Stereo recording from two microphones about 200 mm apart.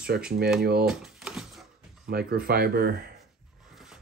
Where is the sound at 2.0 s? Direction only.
50° right (ahead or behind).